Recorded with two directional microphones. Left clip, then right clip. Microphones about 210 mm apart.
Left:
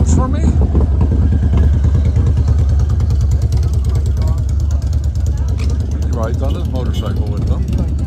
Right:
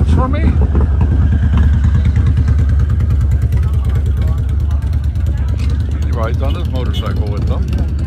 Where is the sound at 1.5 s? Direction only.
40° left (ahead or behind).